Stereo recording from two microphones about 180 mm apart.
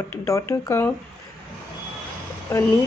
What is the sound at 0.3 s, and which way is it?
Speech, 15° left (ahead or behind).